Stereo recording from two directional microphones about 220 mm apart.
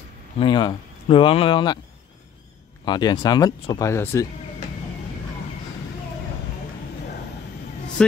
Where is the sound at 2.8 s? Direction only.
20° left (ahead or behind).